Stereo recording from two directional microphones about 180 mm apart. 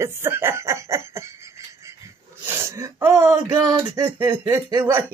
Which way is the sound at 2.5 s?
15° right (ahead or behind).